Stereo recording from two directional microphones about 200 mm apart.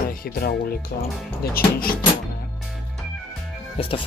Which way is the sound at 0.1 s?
50° left (ahead or behind).